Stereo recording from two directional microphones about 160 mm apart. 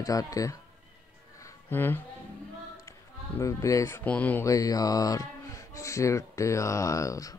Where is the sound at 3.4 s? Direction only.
20° left (ahead or behind).